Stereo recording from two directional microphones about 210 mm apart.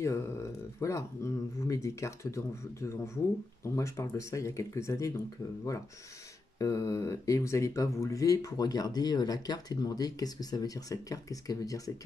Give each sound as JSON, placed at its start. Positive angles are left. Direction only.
{"t": 0.0, "sound": "speech", "side_deg": 15}
{"t": 6.6, "sound": "speech", "side_deg": 15}